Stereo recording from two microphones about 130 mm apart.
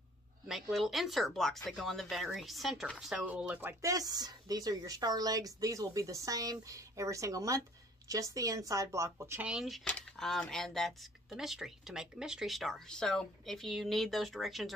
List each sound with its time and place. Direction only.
0.5 s speech: centre (ahead or behind)
3.8 s a woman's voice: 30° right (ahead or behind)
9.5 s speech: centre (ahead or behind)